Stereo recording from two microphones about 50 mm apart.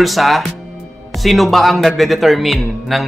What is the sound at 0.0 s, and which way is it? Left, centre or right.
A man's voice, centre.